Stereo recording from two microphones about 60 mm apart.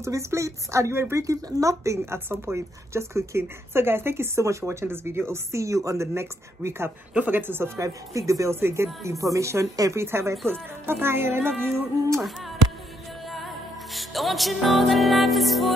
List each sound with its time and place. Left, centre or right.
0.0 s speech: right
2.1 s a woman's voice: right
7.2 s a woman's voice: right
8.5 s a woman's voice: right
10.5 s speech: right
13.3 s music: centre